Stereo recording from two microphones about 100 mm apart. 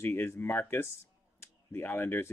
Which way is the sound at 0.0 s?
25° left (ahead or behind).